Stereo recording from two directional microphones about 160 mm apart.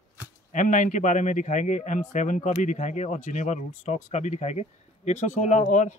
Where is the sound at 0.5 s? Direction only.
50° left (ahead or behind).